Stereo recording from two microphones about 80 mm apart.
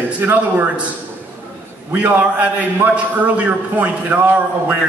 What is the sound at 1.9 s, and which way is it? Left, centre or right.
A man's voice, centre.